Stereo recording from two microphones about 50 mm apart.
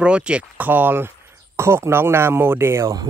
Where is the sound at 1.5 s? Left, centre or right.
Right.